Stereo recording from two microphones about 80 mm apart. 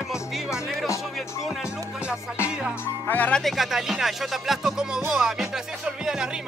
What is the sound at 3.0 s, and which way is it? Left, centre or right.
Speech, left.